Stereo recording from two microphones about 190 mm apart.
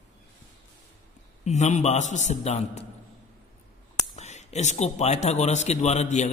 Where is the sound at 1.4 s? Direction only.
35° left (ahead or behind).